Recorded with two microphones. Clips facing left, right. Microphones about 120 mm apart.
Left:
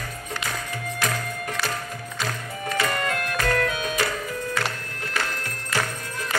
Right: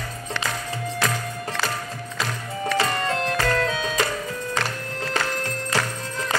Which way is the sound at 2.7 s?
25° right (ahead or behind).